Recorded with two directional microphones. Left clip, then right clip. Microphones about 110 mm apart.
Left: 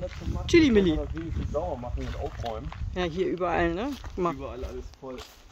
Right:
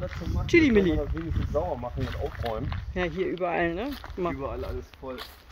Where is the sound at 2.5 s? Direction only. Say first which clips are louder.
Right 4 dB; 45° right (ahead or behind).